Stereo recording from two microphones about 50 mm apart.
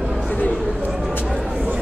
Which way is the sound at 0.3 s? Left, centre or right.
Left.